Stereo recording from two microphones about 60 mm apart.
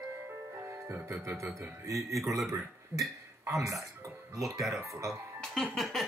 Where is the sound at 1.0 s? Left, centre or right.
Right.